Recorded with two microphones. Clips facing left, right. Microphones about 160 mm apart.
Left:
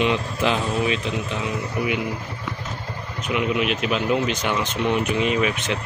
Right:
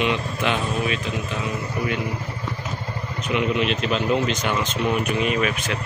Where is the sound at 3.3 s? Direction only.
5° left (ahead or behind).